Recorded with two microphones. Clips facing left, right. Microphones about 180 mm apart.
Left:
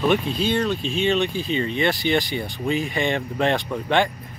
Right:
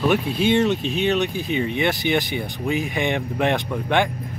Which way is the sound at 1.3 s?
15° right (ahead or behind).